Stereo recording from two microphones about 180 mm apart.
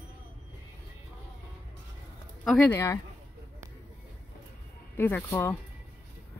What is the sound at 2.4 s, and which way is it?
Speech, 5° left (ahead or behind).